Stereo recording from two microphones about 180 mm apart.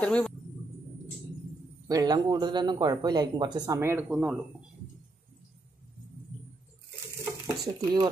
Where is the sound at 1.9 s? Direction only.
20° right (ahead or behind); by 4.4 s 5° right (ahead or behind).